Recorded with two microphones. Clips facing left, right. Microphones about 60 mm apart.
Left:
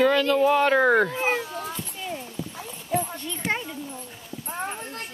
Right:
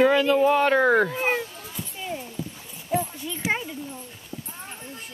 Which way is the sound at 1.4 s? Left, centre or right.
Left.